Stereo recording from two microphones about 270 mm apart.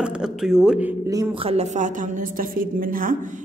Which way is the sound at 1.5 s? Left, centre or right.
Right.